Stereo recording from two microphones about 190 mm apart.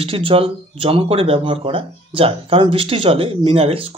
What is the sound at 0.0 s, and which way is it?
Speech, 30° right (ahead or behind).